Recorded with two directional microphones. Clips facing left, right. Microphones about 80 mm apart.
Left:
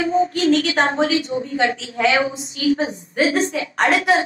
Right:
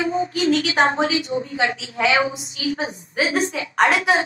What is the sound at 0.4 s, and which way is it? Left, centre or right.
Speech, centre.